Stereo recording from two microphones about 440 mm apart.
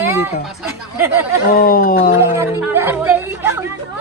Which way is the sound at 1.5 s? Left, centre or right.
Centre.